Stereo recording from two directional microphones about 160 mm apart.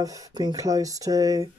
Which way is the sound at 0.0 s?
20° right (ahead or behind).